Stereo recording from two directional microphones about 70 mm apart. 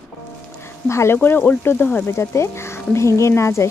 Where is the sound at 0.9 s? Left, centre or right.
Left.